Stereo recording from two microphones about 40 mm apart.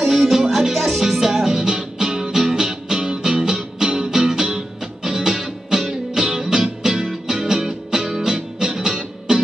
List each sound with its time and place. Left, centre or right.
0.0 s music: centre